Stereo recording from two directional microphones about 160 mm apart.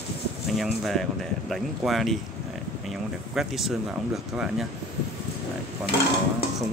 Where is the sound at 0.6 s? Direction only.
Centre (ahead or behind).